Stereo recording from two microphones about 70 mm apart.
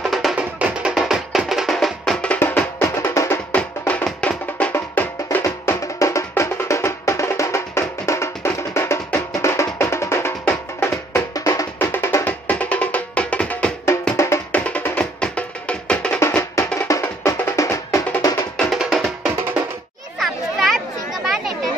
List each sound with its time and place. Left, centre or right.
0.1 s music: centre
0.4 s music: centre
2.2 s music: left
2.8 s music: left
3.5 s music: left
5.4 s music: left
11.3 s music: left
11.8 s music: left
12.3 s music: left
14.1 s music: left
14.5 s music: centre
16.5 s music: left
18.7 s music: centre
20.2 s a sound: centre